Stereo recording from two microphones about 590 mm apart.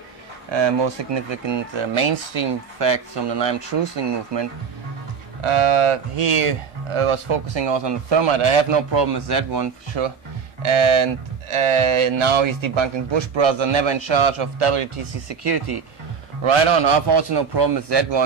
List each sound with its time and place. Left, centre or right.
0.5 s speech: right
5.4 s speech: right
15.4 s speech: right